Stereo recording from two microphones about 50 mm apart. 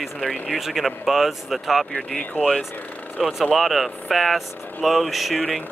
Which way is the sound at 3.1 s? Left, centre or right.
Centre.